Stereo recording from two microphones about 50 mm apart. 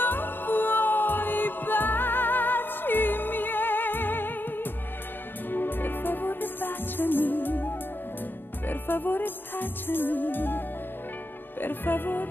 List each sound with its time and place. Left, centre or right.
0.0 s music: left
11.6 s music: left